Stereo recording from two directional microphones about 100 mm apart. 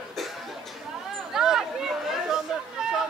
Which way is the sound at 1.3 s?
5° right (ahead or behind).